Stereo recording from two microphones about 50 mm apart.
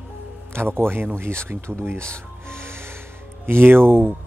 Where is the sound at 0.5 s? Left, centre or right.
Right.